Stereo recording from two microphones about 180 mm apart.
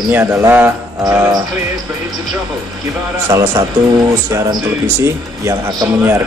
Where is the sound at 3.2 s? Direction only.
20° right (ahead or behind).